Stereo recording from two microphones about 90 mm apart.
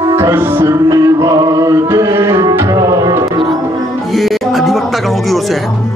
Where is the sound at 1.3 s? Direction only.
40° right (ahead or behind).